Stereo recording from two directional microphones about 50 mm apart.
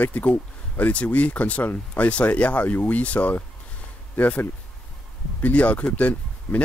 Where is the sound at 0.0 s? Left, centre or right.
Left.